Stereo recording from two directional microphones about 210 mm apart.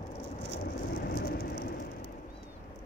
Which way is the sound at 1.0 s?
45° left (ahead or behind).